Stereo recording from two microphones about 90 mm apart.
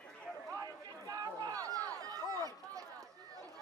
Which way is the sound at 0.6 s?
40° right (ahead or behind).